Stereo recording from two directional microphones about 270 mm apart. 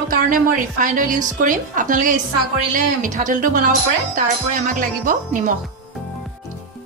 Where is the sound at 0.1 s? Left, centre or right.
Right.